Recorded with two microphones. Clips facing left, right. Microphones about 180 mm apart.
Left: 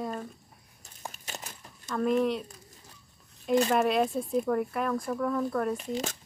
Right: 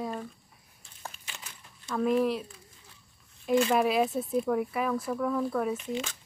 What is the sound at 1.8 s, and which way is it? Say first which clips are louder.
Speech: even; 5° right (ahead or behind).